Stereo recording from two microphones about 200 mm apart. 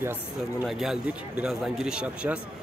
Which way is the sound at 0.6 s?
Centre (ahead or behind).